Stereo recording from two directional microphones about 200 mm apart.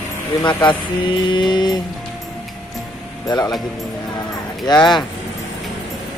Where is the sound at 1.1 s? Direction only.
25° left (ahead or behind).